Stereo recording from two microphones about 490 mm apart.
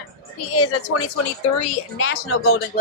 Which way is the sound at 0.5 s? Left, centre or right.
Left.